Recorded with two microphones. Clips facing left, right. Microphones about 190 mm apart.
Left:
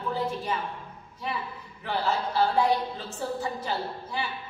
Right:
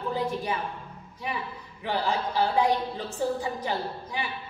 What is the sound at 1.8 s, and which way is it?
A woman's voice, 15° right (ahead or behind).